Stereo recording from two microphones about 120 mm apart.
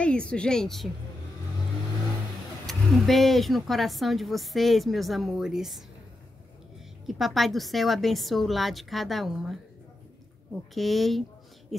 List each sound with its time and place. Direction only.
0.0 s a woman's voice: 10° left (ahead or behind)
2.6 s speech: centre (ahead or behind)
7.1 s speech: centre (ahead or behind)
10.7 s speech: centre (ahead or behind)